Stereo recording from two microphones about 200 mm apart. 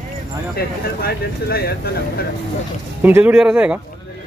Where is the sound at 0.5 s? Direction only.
50° left (ahead or behind).